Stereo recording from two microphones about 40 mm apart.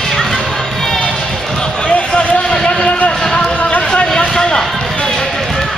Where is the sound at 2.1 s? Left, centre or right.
Left.